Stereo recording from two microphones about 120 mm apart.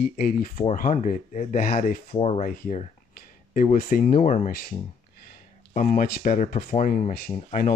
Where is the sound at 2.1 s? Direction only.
65° left (ahead or behind); by 4.5 s 90° left.